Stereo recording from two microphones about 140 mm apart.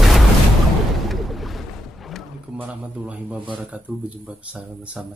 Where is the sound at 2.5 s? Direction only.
10° right (ahead or behind).